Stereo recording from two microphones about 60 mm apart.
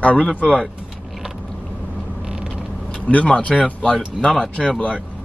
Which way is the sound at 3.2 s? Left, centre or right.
Centre.